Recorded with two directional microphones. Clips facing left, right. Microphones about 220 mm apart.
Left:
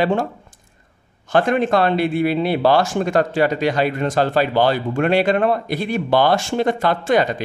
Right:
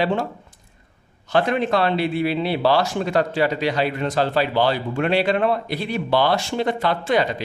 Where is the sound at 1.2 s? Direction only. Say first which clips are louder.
Left 3 dB; 50° left (ahead or behind).